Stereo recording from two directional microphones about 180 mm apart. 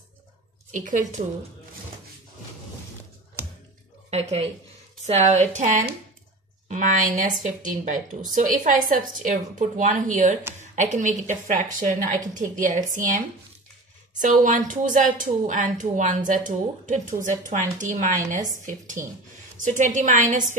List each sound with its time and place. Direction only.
0.7 s a woman's voice: 45° right (ahead or behind)
4.1 s a woman's voice: 35° right (ahead or behind)
14.2 s a woman's voice: 45° right (ahead or behind)